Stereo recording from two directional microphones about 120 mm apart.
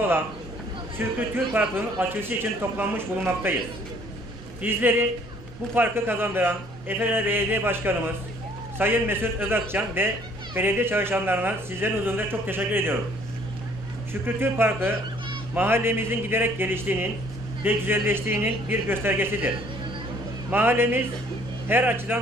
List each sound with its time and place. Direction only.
0.9 s a man's voice: 15° right (ahead or behind)
14.2 s a man's voice: 20° right (ahead or behind)
20.5 s a man's voice: 20° right (ahead or behind)